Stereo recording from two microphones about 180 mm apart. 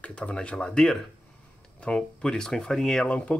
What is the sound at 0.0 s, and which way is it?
Speech, 5° left (ahead or behind).